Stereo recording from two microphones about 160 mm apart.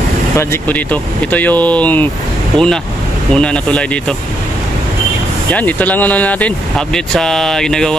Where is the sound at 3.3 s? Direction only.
5° left (ahead or behind).